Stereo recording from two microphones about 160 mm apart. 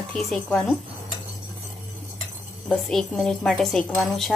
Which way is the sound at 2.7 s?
5° left (ahead or behind).